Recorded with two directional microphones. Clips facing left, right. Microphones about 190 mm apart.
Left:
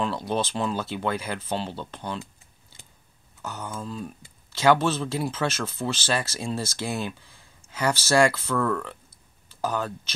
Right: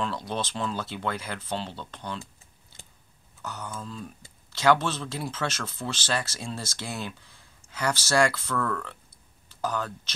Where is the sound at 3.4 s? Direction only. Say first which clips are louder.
Left 2 dB; 30° left (ahead or behind).